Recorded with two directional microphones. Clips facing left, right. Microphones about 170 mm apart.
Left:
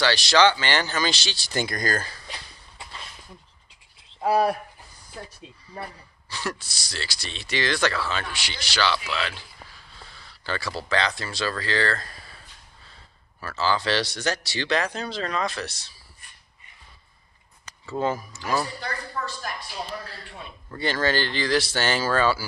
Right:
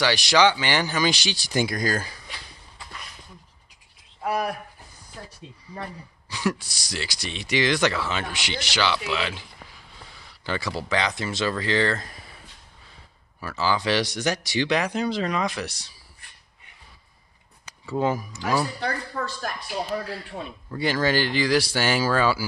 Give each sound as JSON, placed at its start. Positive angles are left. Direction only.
{"t": 0.0, "sound": "speech", "side_deg": -15}
{"t": 4.2, "sound": "speech", "side_deg": 30}
{"t": 5.7, "sound": "speech", "side_deg": -15}
{"t": 17.6, "sound": "speech", "side_deg": -15}
{"t": 18.8, "sound": "speech", "side_deg": -55}
{"t": 20.7, "sound": "speech", "side_deg": -10}